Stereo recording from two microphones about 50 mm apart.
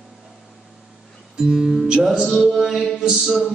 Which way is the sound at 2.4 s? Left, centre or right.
Centre.